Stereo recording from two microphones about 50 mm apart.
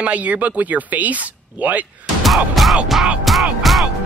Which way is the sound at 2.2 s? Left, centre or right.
Centre.